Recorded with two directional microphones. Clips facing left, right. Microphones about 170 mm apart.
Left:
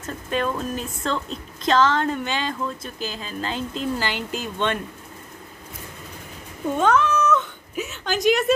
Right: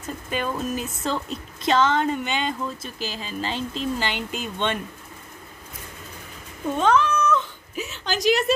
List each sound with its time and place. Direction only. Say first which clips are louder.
0.0 s speech: left 3 dB; 5° right (ahead or behind)
6.8 s cat: left 1 dB; centre (ahead or behind)
8.0 s a woman's voice: left 1 dB; 55° left (ahead or behind)